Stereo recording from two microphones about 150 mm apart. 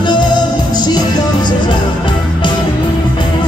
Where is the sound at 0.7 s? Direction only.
30° left (ahead or behind).